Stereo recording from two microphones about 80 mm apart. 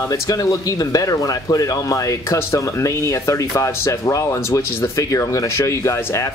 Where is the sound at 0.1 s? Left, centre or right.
Left.